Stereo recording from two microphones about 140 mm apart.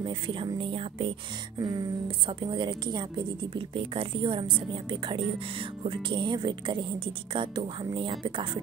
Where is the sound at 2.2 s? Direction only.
35° right (ahead or behind).